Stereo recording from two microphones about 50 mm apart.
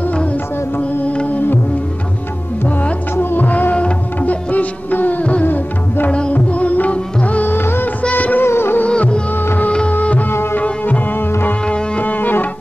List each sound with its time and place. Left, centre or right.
0.7 s mantra: left
1.1 s music: left
3.2 s music: left
5.5 s music: left
7.4 s music of bollywood: left
8.1 s music: left
8.4 s music: left
8.8 s music: left
11.1 s music: left
11.6 s music: left
12.0 s music: left